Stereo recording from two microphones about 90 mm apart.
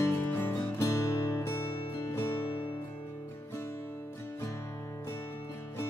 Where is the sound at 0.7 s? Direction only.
35° left (ahead or behind).